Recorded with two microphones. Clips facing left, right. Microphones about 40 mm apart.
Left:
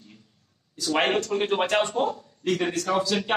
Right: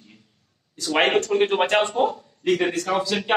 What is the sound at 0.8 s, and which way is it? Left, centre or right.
A man's voice, right.